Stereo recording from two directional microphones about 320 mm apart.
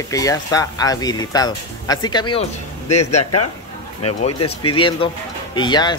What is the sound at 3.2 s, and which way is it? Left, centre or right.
Speech, left.